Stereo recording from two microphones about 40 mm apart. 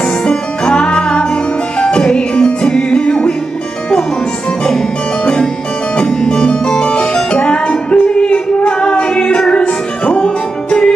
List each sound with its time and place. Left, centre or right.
0.0 s music: left
5.9 s music: left